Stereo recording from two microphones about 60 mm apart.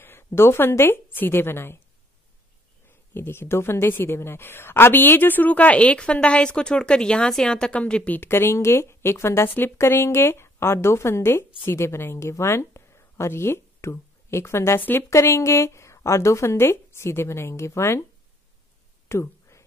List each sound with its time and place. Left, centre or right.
0.0 s a woman's voice: left
3.2 s a woman's voice: left
8.3 s a woman's voice: left
15.0 s a woman's voice: left
19.0 s a sound: left